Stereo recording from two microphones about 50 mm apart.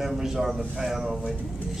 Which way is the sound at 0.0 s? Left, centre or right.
Centre.